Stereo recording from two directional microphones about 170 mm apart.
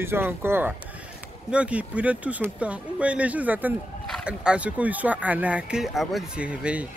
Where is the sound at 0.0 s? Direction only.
15° right (ahead or behind).